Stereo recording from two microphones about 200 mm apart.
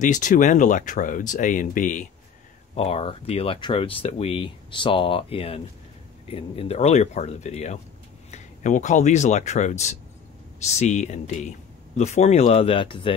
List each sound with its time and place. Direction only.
0.0 s speech: 40° left (ahead or behind)
2.7 s speech: 30° left (ahead or behind)